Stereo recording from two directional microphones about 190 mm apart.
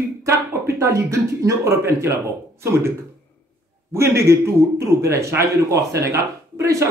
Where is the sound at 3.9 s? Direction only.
15° right (ahead or behind).